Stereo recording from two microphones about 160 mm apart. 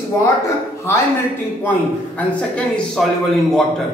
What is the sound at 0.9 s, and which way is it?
Speech, 15° left (ahead or behind).